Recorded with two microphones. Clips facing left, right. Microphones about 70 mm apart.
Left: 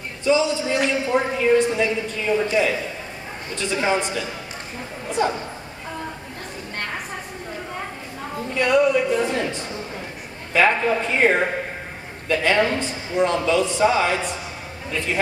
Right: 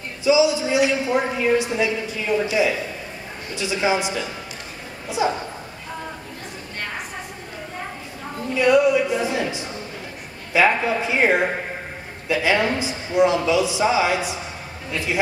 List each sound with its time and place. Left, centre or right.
0.2 s a man's voice: centre
3.5 s a man's voice: centre
8.5 s a man's voice: centre